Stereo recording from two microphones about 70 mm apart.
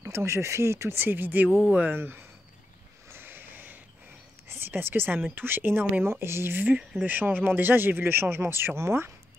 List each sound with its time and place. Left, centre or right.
0.0 s speech: right
3.1 s a sound: right
4.5 s speech: right